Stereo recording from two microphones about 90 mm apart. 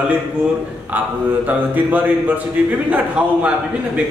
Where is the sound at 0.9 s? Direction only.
20° right (ahead or behind).